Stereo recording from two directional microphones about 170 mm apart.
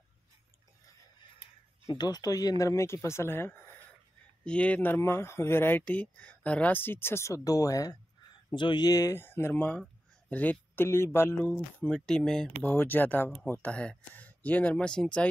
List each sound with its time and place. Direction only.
2.0 s speech: 25° left (ahead or behind); by 15.2 s 5° left (ahead or behind)